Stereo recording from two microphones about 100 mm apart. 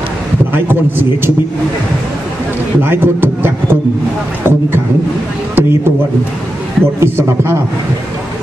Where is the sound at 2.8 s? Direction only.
20° right (ahead or behind).